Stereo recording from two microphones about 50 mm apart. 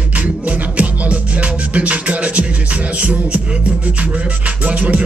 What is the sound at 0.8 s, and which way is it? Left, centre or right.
Music, right.